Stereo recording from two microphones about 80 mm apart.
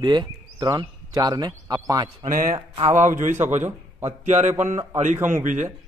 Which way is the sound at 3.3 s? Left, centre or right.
Right.